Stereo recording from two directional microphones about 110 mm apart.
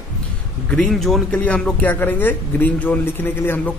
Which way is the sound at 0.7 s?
5° left (ahead or behind).